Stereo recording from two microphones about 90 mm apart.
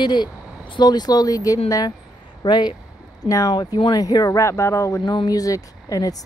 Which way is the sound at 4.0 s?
45° left (ahead or behind).